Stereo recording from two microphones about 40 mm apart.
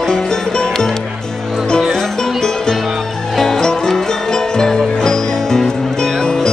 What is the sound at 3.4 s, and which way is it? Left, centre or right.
Music, centre.